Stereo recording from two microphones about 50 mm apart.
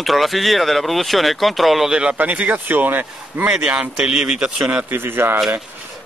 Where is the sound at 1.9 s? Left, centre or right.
Centre.